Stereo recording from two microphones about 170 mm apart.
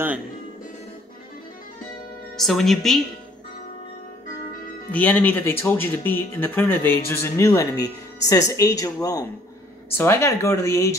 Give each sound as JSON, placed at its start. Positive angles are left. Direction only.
{"t": 2.3, "sound": "a woman's voice", "side_deg": 0}
{"t": 4.9, "sound": "speech", "side_deg": 10}